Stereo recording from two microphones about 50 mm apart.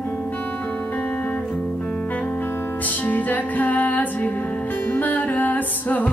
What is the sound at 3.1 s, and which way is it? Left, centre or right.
Music, left.